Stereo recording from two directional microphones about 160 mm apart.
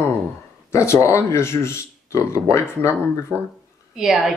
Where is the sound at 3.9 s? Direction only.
5° right (ahead or behind).